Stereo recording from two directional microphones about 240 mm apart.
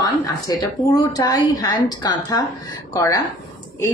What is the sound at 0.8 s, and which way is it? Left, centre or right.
A woman's voice, centre.